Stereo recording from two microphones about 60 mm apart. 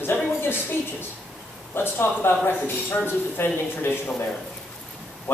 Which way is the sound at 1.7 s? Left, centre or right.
Left.